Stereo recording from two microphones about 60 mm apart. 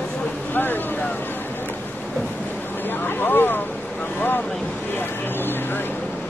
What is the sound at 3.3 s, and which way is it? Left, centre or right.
Speech, left.